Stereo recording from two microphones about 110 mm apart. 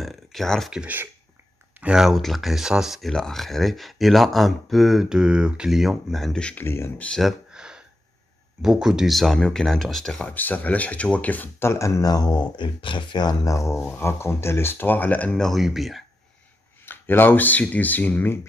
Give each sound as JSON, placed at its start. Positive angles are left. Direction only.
{"t": 0.0, "sound": "a sound", "side_deg": 0}
{"t": 0.7, "sound": "speech", "side_deg": -15}
{"t": 6.6, "sound": "speech", "side_deg": 20}
{"t": 7.1, "sound": "a sound", "side_deg": 0}
{"t": 8.6, "sound": "speech", "side_deg": -5}
{"t": 10.3, "sound": "speech", "side_deg": 15}
{"t": 16.8, "sound": "speech", "side_deg": 20}